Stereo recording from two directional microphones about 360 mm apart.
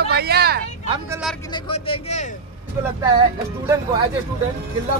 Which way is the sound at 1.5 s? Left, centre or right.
Centre.